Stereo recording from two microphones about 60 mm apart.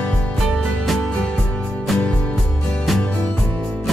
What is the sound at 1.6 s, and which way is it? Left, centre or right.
Music, centre.